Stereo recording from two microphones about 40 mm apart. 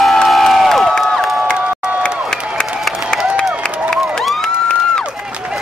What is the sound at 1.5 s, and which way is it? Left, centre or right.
Crowd, right.